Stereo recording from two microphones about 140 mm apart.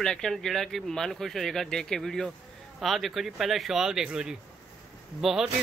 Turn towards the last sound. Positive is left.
turn(degrees=0)  # may be behind; listen again after turning